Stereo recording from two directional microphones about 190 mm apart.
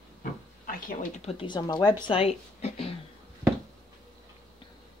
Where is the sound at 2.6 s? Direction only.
30° left (ahead or behind).